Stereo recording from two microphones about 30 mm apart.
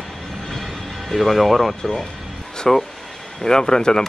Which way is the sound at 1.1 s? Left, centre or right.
Centre.